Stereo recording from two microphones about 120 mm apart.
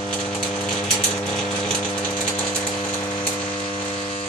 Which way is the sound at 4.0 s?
75° left (ahead or behind).